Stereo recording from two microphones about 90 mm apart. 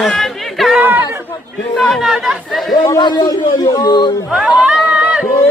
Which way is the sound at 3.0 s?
60° left (ahead or behind).